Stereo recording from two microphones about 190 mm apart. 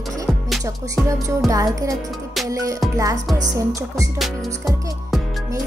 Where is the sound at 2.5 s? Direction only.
15° right (ahead or behind).